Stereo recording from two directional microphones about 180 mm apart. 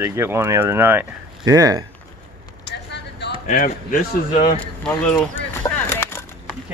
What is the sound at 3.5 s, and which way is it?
Speech, 50° left (ahead or behind).